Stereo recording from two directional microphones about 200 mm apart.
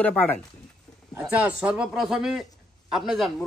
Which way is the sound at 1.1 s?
5° right (ahead or behind).